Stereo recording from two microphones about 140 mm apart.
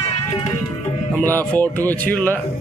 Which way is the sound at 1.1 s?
15° left (ahead or behind).